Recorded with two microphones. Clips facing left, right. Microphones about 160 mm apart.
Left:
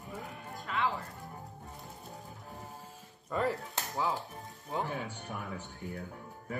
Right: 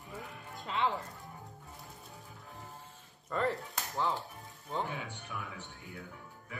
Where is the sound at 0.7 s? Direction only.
25° right (ahead or behind).